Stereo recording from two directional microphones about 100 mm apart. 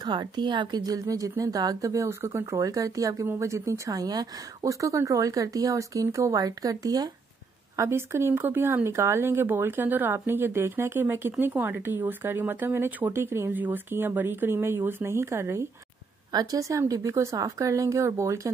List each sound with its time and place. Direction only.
0.0 s a woman's voice: 45° right (ahead or behind)
7.7 s speech: 25° right (ahead or behind)
16.3 s speech: 40° right (ahead or behind)